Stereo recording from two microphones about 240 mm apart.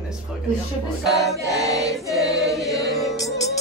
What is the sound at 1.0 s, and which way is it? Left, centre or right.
Music, centre.